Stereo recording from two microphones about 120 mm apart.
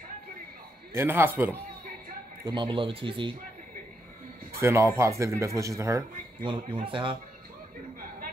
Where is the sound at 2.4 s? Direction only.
40° right (ahead or behind).